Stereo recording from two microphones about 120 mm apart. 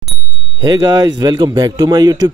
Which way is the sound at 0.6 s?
35° right (ahead or behind).